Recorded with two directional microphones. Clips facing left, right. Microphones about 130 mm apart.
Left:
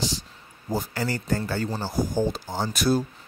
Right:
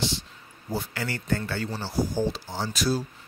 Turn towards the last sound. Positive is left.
turn(degrees=55)  # may be behind; listen again after turning